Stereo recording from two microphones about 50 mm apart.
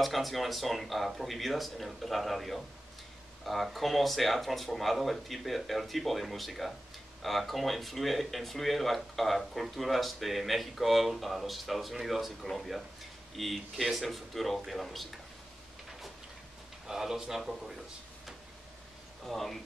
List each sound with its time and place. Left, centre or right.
0.0 s speech: centre
16.8 s a man's voice: centre
19.2 s speech: centre